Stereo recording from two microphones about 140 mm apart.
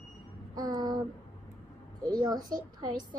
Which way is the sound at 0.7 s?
30° right (ahead or behind).